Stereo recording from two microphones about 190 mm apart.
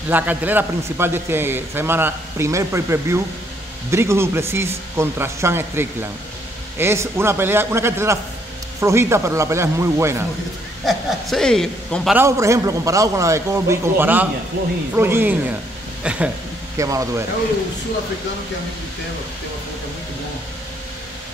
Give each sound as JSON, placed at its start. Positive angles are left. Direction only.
{"t": 0.1, "sound": "a man's voice", "side_deg": -10}
{"t": 10.9, "sound": "a man's voice", "side_deg": 0}
{"t": 12.2, "sound": "a man's voice", "side_deg": -15}
{"t": 16.7, "sound": "a man's voice", "side_deg": -15}